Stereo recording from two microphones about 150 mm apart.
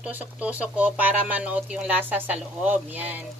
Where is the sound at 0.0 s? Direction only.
10° right (ahead or behind).